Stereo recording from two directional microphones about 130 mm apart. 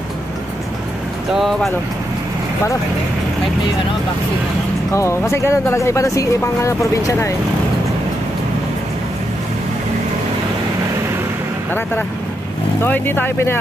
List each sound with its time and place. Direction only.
1.3 s speech: centre (ahead or behind)
4.9 s speech: 20° left (ahead or behind)
12.8 s speech: 15° left (ahead or behind)